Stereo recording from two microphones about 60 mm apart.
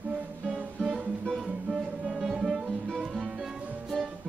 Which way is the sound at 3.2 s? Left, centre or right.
Centre.